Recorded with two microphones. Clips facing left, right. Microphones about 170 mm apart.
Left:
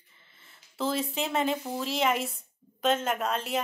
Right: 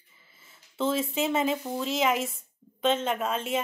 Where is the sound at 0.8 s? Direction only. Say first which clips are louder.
Right 3 dB; centre (ahead or behind).